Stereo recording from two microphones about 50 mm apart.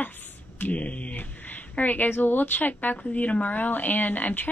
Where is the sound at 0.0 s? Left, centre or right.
Left.